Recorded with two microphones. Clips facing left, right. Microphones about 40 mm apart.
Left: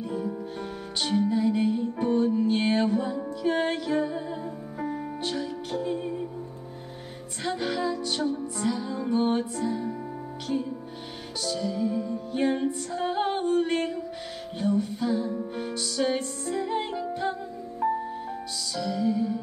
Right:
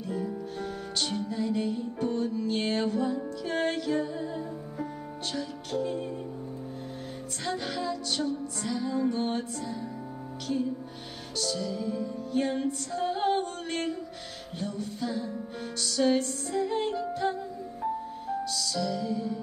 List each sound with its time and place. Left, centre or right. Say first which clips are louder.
0.1 s music: right 2 dB; centre
5.2 s music: left 1 dB; centre
7.4 s music: left 4 dB; centre
11.4 s music: left 4 dB; centre